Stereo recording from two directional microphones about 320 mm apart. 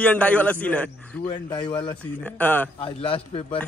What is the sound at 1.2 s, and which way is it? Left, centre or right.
A man's voice, centre.